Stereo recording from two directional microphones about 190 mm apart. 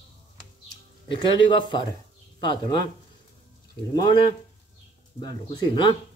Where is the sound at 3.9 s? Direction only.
25° left (ahead or behind).